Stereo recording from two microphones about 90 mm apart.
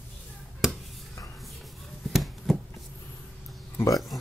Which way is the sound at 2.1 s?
Centre (ahead or behind).